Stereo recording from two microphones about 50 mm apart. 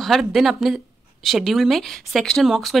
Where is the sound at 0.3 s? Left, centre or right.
Centre.